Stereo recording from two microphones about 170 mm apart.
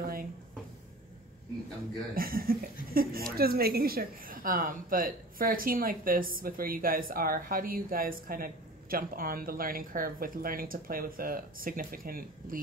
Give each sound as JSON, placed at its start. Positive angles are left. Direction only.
{"t": 0.0, "sound": "cupboard open or close", "side_deg": -60}
{"t": 2.1, "sound": "speech", "side_deg": -60}